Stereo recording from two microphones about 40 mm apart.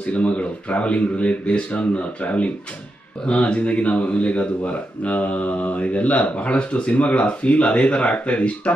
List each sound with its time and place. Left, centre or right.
0.0 s speech: left